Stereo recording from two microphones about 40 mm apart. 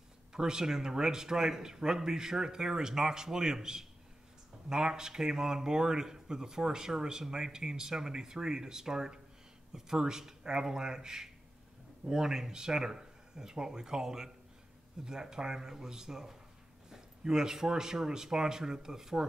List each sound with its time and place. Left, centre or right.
0.3 s a man's voice: centre